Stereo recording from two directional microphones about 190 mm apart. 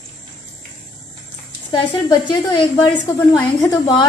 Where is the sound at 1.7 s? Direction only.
25° left (ahead or behind).